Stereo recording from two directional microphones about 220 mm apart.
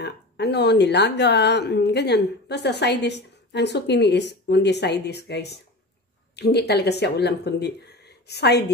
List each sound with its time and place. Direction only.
0.0 s speech: 50° left (ahead or behind)